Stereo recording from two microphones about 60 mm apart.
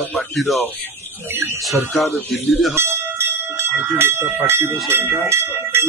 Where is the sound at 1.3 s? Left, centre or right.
Right.